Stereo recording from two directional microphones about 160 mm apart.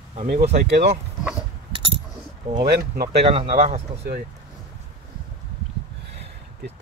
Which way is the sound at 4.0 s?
90° right.